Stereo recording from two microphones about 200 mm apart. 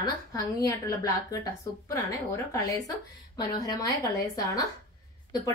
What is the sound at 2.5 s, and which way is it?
A woman's voice, 15° left (ahead or behind).